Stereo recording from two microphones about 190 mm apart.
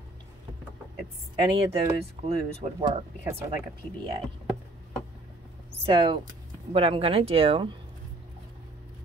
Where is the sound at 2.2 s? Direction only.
35° right (ahead or behind).